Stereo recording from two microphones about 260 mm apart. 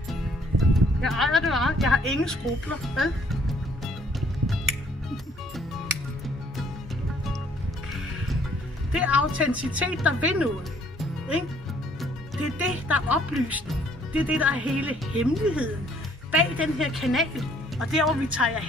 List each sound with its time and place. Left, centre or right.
0.1 s speech: centre
8.9 s speech: centre
11.0 s music: centre
12.0 s speech: centre